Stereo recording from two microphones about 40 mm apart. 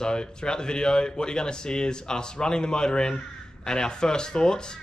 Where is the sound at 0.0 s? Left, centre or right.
Left.